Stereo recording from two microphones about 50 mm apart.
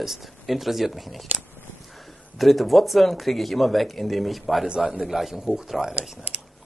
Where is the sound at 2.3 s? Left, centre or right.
Centre.